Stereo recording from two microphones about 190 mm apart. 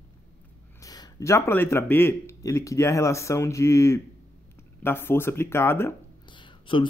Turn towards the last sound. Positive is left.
turn(degrees=25)  # may be behind; listen again after turning